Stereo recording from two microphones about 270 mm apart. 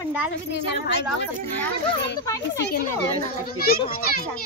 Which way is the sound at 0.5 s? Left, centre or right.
Left.